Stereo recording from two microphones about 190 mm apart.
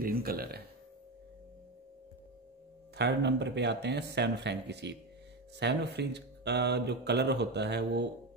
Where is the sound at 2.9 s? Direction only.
65° right (ahead or behind).